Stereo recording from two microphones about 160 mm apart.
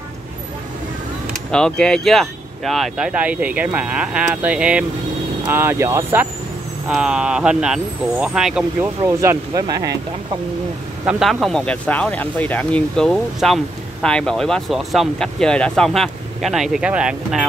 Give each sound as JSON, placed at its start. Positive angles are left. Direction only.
{"t": 1.5, "sound": "speech", "side_deg": 5}
{"t": 6.9, "sound": "speech", "side_deg": -5}
{"t": 9.0, "sound": "speech", "side_deg": -20}
{"t": 11.1, "sound": "speech", "side_deg": -5}